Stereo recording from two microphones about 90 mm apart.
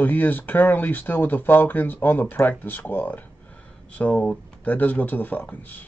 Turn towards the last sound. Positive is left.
turn(degrees=20)  # may be behind; listen again after turning